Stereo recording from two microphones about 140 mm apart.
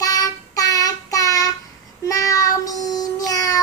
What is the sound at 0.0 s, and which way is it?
Child singing, 25° left (ahead or behind).